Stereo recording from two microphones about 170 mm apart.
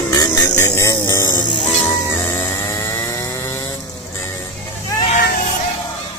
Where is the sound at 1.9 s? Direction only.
15° left (ahead or behind).